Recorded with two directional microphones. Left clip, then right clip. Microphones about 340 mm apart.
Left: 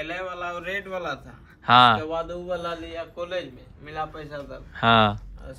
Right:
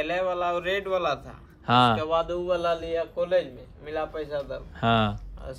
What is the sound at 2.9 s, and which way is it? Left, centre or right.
A man's voice, right.